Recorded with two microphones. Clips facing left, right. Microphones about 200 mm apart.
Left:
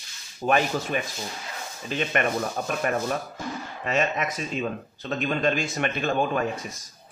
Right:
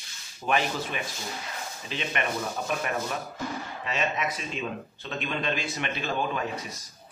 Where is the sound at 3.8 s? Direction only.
50° left (ahead or behind).